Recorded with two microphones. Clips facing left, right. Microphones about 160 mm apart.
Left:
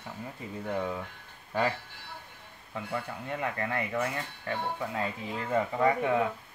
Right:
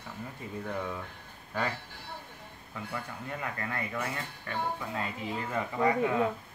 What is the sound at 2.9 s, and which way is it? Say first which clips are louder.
Speech: left 4 dB; 25° left (ahead or behind).